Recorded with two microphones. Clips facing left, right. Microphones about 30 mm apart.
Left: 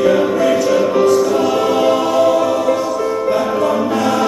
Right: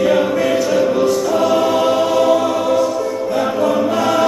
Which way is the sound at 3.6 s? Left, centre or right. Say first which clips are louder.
Even; centre.